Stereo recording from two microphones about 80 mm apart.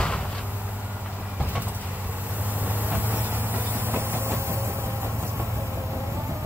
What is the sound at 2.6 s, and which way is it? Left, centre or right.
Train, right.